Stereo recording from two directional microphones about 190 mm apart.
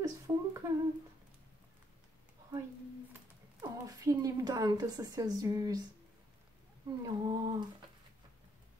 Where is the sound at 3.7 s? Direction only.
20° right (ahead or behind).